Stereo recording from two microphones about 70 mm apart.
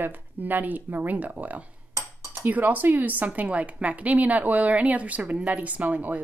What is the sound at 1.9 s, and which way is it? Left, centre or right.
Cutlery, right.